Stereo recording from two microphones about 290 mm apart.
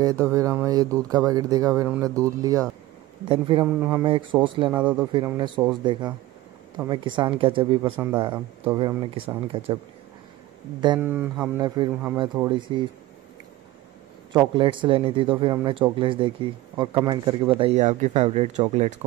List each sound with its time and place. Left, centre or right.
0.0 s speech: centre
4.7 s a man's voice: centre
10.8 s speech: centre
14.3 s speech: centre